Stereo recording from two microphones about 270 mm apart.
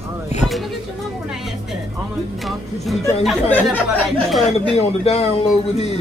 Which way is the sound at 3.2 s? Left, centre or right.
Centre.